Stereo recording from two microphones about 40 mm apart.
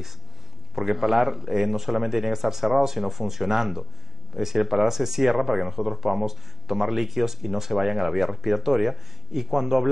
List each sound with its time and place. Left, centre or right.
0.7 s speech: centre